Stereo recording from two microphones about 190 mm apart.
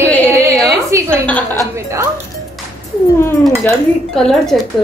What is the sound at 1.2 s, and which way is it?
Speech, 10° left (ahead or behind).